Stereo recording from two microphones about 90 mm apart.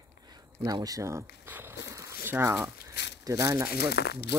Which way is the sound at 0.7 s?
45° right (ahead or behind).